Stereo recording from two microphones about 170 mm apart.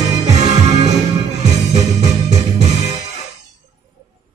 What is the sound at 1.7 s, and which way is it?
Music, 40° right (ahead or behind).